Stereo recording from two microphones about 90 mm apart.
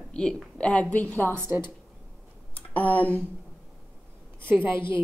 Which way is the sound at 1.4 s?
25° right (ahead or behind).